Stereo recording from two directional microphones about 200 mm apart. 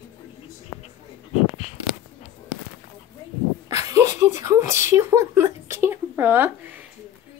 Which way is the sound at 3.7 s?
15° right (ahead or behind).